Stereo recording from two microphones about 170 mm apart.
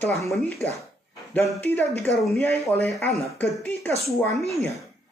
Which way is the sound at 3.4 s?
10° left (ahead or behind).